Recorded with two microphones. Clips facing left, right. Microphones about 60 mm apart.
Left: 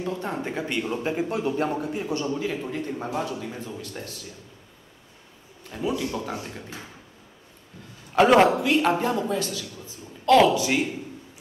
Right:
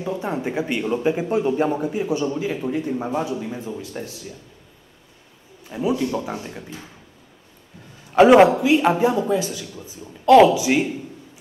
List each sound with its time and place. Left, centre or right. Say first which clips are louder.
0.0 s speech: right 4 dB; centre
5.7 s speech: right 5 dB; centre
8.1 s a woman's voice: right 5 dB; centre